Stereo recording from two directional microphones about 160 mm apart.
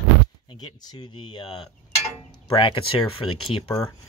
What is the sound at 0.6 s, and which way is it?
Speech, 25° left (ahead or behind).